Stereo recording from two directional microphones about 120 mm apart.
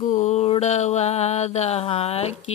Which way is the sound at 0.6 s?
75° left (ahead or behind).